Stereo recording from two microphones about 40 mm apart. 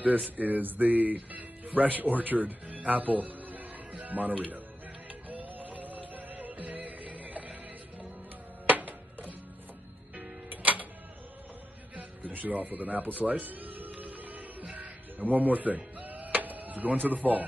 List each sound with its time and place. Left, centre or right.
0.4 s a sound: right
1.3 s speech: right
2.7 s music: right
4.0 s speech: right
5.3 s music: right
8.6 s music: right
10.5 s music: right
12.0 s music: right
14.6 s music: right
15.1 s speech: right